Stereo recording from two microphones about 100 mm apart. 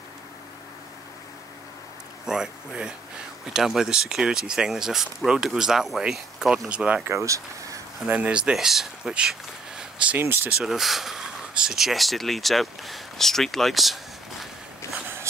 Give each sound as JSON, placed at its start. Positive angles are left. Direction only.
{"t": 2.2, "sound": "speech", "side_deg": -5}
{"t": 7.1, "sound": "speech", "side_deg": -30}
{"t": 8.1, "sound": "speech", "side_deg": -10}
{"t": 10.2, "sound": "speech", "side_deg": -25}
{"t": 10.6, "sound": "speech", "side_deg": 0}